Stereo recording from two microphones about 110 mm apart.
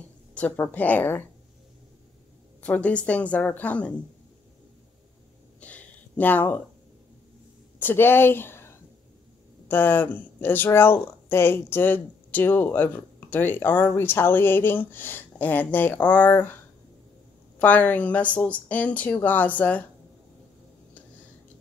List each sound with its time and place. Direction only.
0.0 s a woman's voice: 15° left (ahead or behind)
2.6 s speech: 10° left (ahead or behind)
5.6 s a sound: 15° left (ahead or behind)
7.8 s speech: 20° left (ahead or behind)
17.6 s speech: 15° left (ahead or behind)